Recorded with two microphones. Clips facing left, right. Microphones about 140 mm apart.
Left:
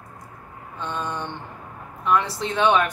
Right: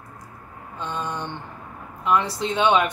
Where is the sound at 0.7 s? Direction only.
15° right (ahead or behind).